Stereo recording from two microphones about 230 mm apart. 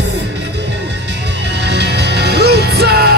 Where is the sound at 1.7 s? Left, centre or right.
Right.